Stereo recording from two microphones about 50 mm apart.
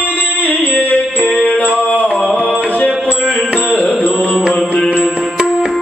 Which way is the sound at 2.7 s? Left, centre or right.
Left.